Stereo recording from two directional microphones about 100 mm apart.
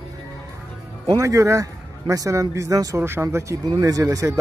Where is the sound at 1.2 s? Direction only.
30° right (ahead or behind).